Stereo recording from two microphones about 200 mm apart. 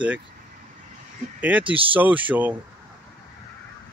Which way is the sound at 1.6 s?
25° right (ahead or behind).